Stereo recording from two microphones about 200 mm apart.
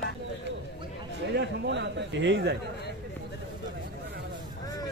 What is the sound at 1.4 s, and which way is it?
Speech, 60° right (ahead or behind).